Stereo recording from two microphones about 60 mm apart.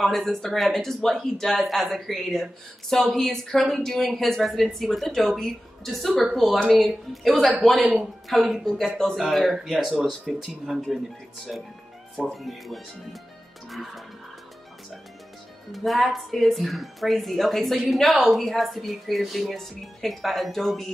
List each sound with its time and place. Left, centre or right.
0.0 s a man's voice: centre
12.3 s a man's voice: centre
15.7 s a man's voice: centre